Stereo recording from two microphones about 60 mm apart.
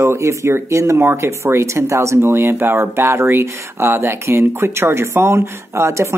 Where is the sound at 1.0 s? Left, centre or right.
Right.